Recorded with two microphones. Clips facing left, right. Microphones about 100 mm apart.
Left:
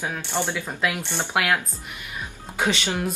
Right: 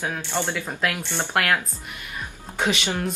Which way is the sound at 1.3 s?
5° left (ahead or behind).